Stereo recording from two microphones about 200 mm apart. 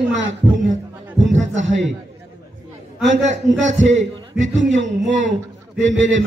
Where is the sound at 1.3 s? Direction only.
35° right (ahead or behind).